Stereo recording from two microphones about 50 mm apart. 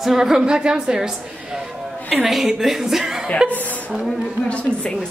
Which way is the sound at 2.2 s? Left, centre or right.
Centre.